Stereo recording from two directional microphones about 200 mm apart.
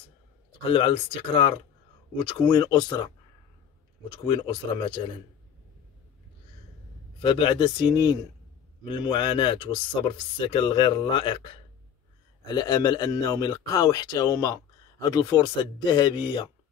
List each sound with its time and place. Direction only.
0.7 s speech: 25° left (ahead or behind)
4.1 s speech: 25° left (ahead or behind)
7.2 s speech: 25° left (ahead or behind)